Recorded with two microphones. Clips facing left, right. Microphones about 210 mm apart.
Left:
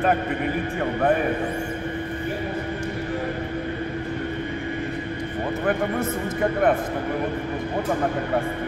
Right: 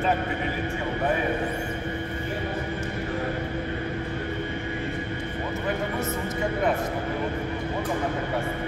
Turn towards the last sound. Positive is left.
turn(degrees=55)  # may be behind; listen again after turning